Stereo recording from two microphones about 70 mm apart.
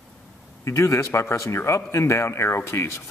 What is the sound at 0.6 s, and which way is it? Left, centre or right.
Speech, left.